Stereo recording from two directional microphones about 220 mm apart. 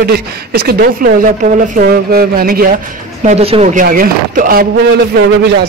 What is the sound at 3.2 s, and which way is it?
Speech, 30° right (ahead or behind).